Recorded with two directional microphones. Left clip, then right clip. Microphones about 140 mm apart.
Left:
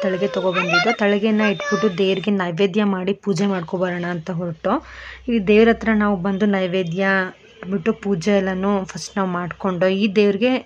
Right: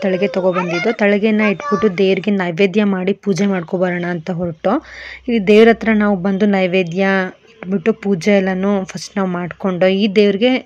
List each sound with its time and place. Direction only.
0.0 s a woman's voice: 25° right (ahead or behind)